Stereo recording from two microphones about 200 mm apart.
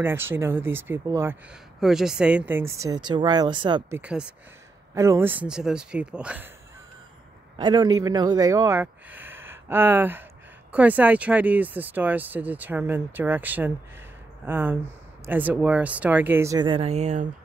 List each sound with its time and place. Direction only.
0.0 s speech: 10° right (ahead or behind)
1.8 s speech: centre (ahead or behind); by 3.8 s 25° right (ahead or behind)
3.9 s speech: 5° right (ahead or behind)
7.5 s speech: 20° right (ahead or behind)